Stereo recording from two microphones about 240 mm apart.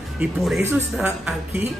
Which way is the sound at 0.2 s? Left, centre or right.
Centre.